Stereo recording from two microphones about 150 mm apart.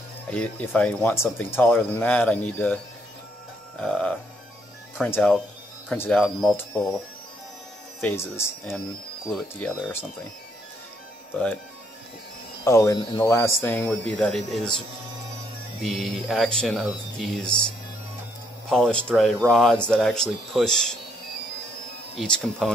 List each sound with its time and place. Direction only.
0.3 s speech: 10° left (ahead or behind)
8.0 s speech: 15° left (ahead or behind)
9.3 s speech: 5° left (ahead or behind)
11.3 s speech: 10° left (ahead or behind)
12.6 s speech: 20° left (ahead or behind)
13.8 s speech: 5° left (ahead or behind)
15.8 s speech: centre (ahead or behind)
18.7 s speech: 5° left (ahead or behind)
22.2 s speech: centre (ahead or behind)